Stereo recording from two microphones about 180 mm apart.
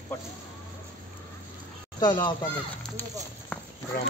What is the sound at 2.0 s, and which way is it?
Speech, 25° left (ahead or behind).